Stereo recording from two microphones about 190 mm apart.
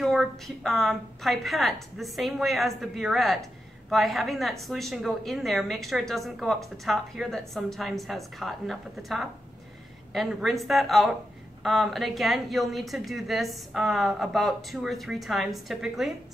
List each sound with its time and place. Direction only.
0.0 s a woman's voice: centre (ahead or behind)